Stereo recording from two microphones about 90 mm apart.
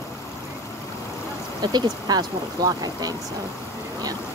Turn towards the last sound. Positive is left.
turn(degrees=-45)  # may be behind; listen again after turning